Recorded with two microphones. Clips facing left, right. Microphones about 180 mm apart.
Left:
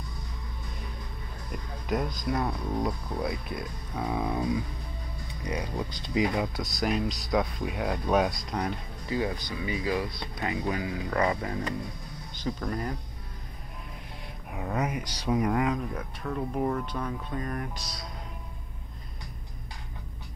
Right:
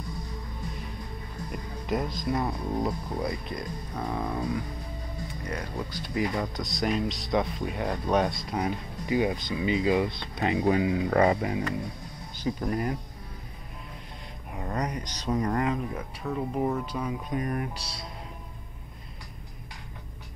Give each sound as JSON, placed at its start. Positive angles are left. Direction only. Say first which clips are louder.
{"t": 1.9, "sound": "speech", "louder": "right 1 dB", "side_deg": 0}
{"t": 6.4, "sound": "speech", "louder": "even", "side_deg": 5}
{"t": 12.4, "sound": "speech", "louder": "right 3 dB", "side_deg": -10}
{"t": 14.5, "sound": "speech", "louder": "left 1 dB", "side_deg": 5}
{"t": 17.7, "sound": "speech", "louder": "right 1 dB", "side_deg": -30}